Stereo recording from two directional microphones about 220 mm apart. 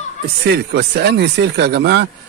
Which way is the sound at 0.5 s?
50° right (ahead or behind).